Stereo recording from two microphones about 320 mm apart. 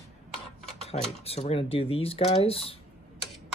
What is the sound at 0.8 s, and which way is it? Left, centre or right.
Speech, centre.